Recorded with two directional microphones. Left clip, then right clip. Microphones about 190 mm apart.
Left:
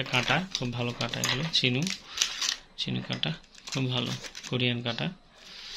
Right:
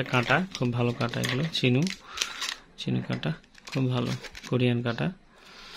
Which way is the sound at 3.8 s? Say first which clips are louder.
Right 1 dB; 40° right (ahead or behind).